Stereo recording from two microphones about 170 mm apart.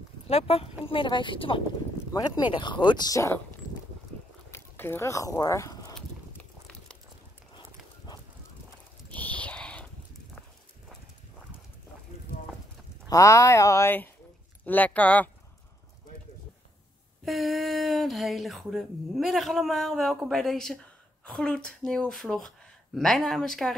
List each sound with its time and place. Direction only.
0.3 s speech: 35° left (ahead or behind); by 3.3 s 20° left (ahead or behind)
4.5 s a sound: 15° left (ahead or behind)
5.9 s horse: 5° left (ahead or behind)
9.1 s a sound: 10° left (ahead or behind)
13.1 s speech: 20° left (ahead or behind)
17.2 s speech: centre (ahead or behind)